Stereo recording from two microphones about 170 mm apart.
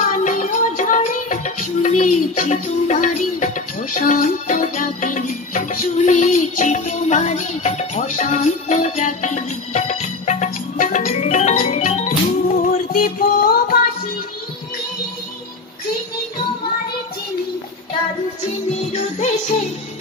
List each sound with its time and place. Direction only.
0.0 s music: 50° left (ahead or behind)